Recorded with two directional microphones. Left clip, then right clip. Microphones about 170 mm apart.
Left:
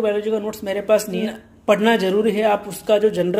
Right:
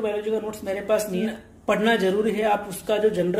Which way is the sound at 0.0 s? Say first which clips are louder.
Left 5 dB; 45° left (ahead or behind).